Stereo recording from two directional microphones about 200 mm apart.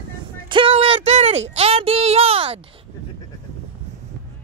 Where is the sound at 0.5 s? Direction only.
25° right (ahead or behind).